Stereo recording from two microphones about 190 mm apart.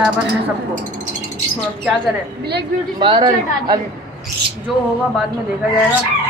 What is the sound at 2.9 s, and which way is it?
Speech, 25° right (ahead or behind).